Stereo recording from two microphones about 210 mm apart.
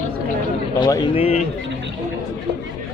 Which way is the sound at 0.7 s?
20° left (ahead or behind).